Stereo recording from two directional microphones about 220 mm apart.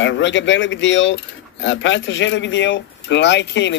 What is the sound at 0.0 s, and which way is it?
Speech, 55° left (ahead or behind).